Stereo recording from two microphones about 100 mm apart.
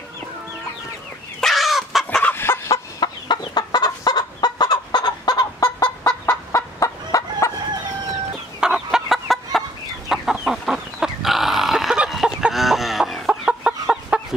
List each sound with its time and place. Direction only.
1.4 s fowl: centre (ahead or behind)
2.3 s fowl: 25° left (ahead or behind)
3.0 s chicken: 45° left (ahead or behind)
6.2 s fowl: 30° left (ahead or behind)
8.5 s fowl: 5° right (ahead or behind)
10.0 s chicken: 5° right (ahead or behind)